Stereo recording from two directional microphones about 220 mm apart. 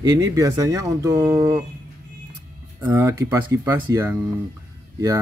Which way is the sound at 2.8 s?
15° right (ahead or behind).